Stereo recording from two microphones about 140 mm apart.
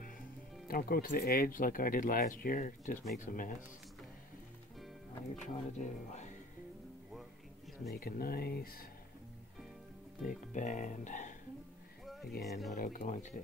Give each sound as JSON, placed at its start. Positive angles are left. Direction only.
{"t": 0.7, "sound": "speech", "side_deg": 90}
{"t": 3.2, "sound": "speech", "side_deg": 80}
{"t": 5.3, "sound": "speech", "side_deg": 60}
{"t": 7.9, "sound": "speech", "side_deg": 90}
{"t": 10.5, "sound": "speech", "side_deg": 65}
{"t": 12.1, "sound": "speech", "side_deg": 0}
{"t": 12.8, "sound": "speech", "side_deg": 70}